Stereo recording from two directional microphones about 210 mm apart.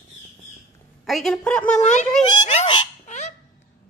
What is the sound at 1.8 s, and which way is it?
Speech, 35° left (ahead or behind).